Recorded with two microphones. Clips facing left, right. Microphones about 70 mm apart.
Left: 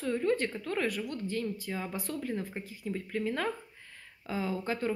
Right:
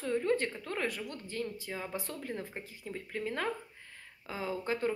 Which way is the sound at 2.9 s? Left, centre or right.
Centre.